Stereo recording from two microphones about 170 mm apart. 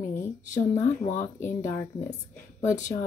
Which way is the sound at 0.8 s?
45° left (ahead or behind).